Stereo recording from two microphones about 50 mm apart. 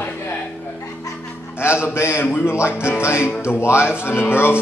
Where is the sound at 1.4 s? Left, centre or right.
Left.